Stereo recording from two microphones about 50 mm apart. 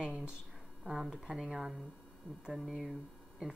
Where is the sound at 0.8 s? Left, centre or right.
Centre.